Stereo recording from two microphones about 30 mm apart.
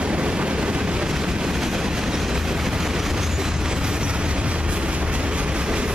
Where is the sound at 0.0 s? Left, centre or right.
Right.